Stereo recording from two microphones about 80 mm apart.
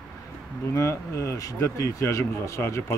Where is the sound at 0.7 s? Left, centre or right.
Left.